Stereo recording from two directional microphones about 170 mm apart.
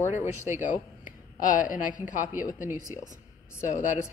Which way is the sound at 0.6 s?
50° left (ahead or behind).